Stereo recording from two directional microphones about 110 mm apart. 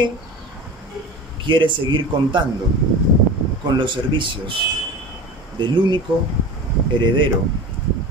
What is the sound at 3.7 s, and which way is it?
Speech, 45° right (ahead or behind).